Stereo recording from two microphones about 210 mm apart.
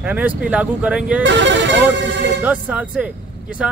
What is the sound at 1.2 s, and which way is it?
Speech, 60° right (ahead or behind).